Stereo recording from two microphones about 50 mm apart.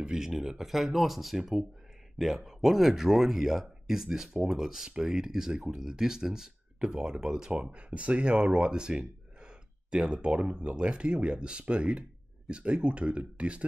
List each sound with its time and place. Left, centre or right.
0.0 s speech: centre